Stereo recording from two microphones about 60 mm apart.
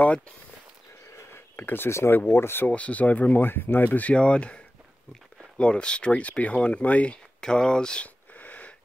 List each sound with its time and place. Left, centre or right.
1.3 s a sound: left
1.9 s speech: left
2.7 s speech: left
4.1 s speech: centre
5.6 s speech: centre
7.3 s a sound: centre